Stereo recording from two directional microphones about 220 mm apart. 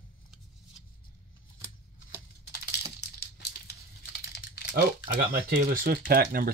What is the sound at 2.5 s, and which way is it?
Computer keyboard, 45° left (ahead or behind).